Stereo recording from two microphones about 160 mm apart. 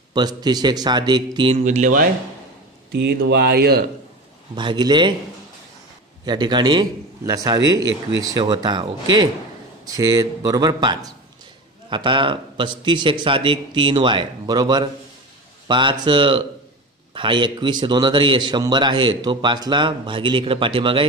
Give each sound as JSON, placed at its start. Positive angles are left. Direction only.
{"t": 0.1, "sound": "a man's voice", "side_deg": -25}
{"t": 1.5, "sound": "speech", "side_deg": -45}
{"t": 2.9, "sound": "speech", "side_deg": -85}
{"t": 4.6, "sound": "a man's voice", "side_deg": -30}
{"t": 6.2, "sound": "a man's voice", "side_deg": -25}